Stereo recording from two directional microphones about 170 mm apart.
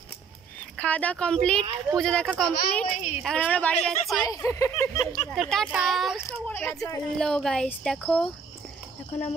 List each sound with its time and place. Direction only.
0.7 s a woman's voice: 10° left (ahead or behind)
4.2 s speech: 20° left (ahead or behind)
5.3 s a woman's voice: centre (ahead or behind)
7.2 s speech: 5° left (ahead or behind)